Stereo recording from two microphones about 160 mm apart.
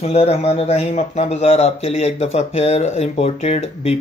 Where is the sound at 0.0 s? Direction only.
40° left (ahead or behind).